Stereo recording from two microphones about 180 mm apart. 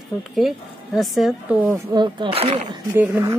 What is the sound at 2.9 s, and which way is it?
Speech, 10° right (ahead or behind).